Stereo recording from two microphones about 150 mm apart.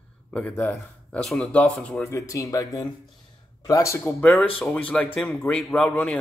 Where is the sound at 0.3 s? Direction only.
10° left (ahead or behind).